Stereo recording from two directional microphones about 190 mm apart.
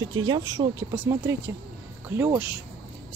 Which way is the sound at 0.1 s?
20° right (ahead or behind).